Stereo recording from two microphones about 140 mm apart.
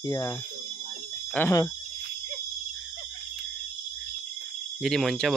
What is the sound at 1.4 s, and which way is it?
Speech, 20° left (ahead or behind).